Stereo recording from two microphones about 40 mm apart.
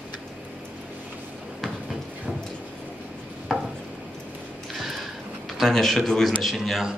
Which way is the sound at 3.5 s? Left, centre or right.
Centre.